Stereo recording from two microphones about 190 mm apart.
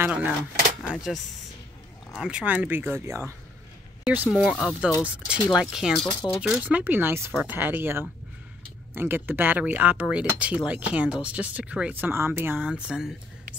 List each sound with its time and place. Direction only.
0.0 s speech: 10° right (ahead or behind)
6.0 s speech: 20° left (ahead or behind)
6.4 s speech: 5° right (ahead or behind)